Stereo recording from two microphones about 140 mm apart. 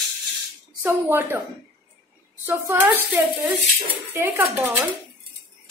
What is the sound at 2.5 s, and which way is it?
Speech, 15° right (ahead or behind).